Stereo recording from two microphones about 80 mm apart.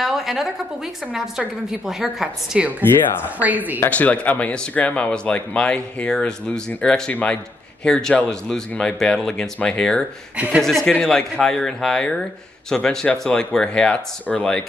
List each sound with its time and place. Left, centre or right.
0.0 s a woman's voice: centre
2.8 s speech: left
3.3 s speech: right
3.9 s speech: centre
10.3 s speech: centre
10.6 s speech: centre